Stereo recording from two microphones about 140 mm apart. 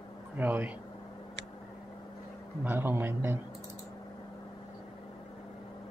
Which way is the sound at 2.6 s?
15° right (ahead or behind).